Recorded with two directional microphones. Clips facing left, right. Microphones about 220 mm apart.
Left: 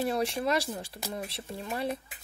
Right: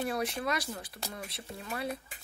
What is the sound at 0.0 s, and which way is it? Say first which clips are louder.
Speech: left 4 dB; 30° left (ahead or behind).